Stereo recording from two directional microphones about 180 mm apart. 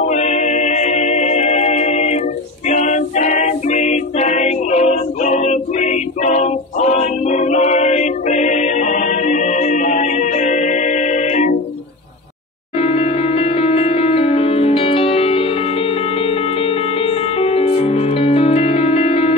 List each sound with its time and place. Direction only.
0.0 s music: 40° left (ahead or behind)
12.7 s music: 30° left (ahead or behind)